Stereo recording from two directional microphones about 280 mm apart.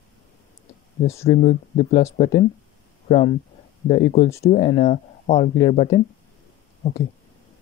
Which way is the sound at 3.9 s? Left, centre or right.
Centre.